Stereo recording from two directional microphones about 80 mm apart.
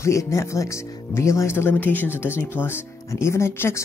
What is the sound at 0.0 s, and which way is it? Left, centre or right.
Speech, left.